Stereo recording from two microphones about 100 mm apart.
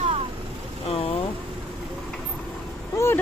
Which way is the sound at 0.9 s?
70° left (ahead or behind).